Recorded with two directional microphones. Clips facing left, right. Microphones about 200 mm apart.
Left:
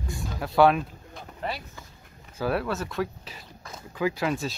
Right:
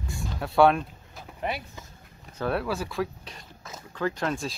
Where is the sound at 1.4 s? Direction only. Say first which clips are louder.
Right 2 dB; 20° right (ahead or behind).